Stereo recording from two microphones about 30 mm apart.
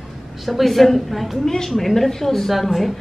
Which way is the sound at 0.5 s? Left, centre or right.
Centre.